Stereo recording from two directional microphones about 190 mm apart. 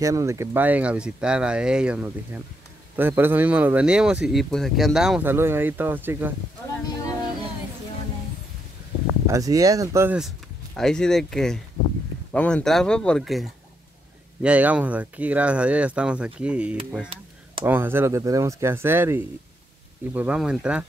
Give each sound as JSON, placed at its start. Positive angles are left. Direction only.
{"t": 0.0, "sound": "speech", "side_deg": -15}
{"t": 6.7, "sound": "a sound", "side_deg": 15}
{"t": 9.3, "sound": "speech", "side_deg": -20}
{"t": 10.8, "sound": "speech", "side_deg": 5}